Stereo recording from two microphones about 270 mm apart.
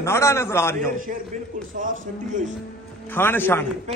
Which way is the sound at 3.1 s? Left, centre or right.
Centre.